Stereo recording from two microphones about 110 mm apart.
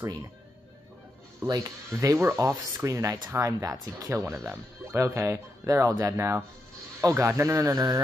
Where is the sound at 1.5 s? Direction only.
30° right (ahead or behind).